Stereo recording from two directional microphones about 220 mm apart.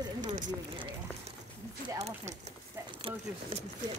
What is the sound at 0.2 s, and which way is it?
Speech, 35° right (ahead or behind).